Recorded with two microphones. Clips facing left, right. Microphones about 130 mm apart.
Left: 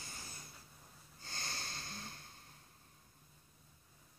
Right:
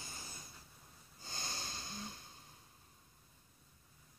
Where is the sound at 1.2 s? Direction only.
20° right (ahead or behind).